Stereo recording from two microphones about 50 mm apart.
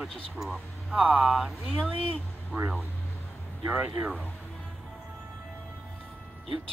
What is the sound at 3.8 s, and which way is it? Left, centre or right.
Speech, right.